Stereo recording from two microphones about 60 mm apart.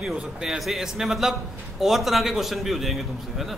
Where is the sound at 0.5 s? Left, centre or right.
Centre.